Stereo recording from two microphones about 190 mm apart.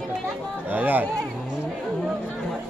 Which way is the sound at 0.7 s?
10° right (ahead or behind).